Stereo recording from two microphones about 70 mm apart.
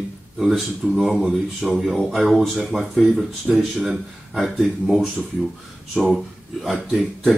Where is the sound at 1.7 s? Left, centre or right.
Centre.